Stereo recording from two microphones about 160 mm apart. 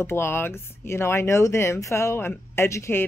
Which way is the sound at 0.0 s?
15° left (ahead or behind).